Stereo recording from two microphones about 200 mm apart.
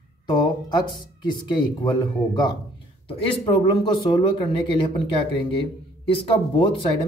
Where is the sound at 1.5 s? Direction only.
20° left (ahead or behind).